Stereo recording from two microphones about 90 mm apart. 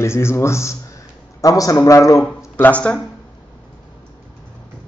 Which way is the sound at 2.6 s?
15° left (ahead or behind).